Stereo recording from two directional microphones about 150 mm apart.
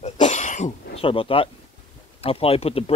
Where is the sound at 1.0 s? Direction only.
35° left (ahead or behind).